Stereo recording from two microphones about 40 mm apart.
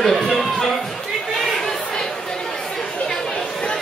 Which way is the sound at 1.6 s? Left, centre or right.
Centre.